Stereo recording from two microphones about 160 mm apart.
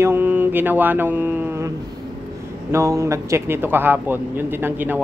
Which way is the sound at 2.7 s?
20° right (ahead or behind).